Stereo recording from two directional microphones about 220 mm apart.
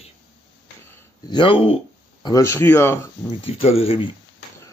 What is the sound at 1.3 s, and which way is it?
Speech, 20° left (ahead or behind).